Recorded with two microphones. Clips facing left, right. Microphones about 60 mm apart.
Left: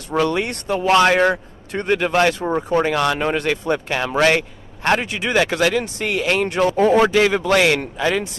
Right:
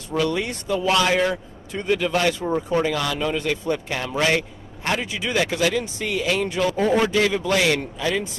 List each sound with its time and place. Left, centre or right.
0.1 s speech: left